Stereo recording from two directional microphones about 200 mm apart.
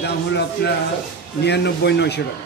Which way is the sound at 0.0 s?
55° left (ahead or behind).